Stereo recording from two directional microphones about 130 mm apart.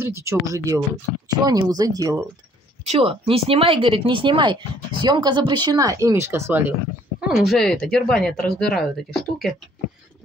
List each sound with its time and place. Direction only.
0.0 s speech: 20° right (ahead or behind)
2.8 s speech: 50° right (ahead or behind); by 6.7 s 20° right (ahead or behind)
7.2 s speech: 5° right (ahead or behind)